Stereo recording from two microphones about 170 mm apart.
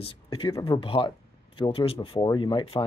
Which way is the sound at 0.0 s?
30° left (ahead or behind).